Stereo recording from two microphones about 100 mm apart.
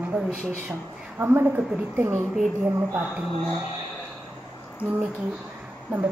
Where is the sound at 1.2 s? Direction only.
25° right (ahead or behind).